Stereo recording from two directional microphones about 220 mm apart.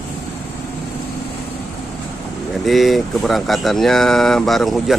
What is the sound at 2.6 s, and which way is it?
Speech, centre (ahead or behind).